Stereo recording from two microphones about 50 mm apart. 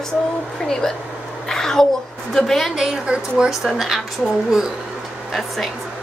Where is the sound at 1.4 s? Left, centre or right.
Centre.